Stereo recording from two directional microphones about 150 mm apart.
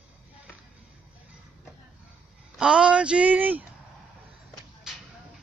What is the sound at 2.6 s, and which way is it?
Speech, 5° right (ahead or behind).